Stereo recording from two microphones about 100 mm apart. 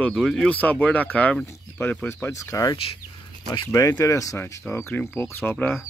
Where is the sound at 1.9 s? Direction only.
15° left (ahead or behind).